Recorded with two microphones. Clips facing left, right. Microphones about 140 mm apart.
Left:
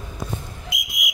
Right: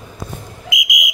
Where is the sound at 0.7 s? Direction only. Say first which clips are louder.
Right 12 dB; 90° right.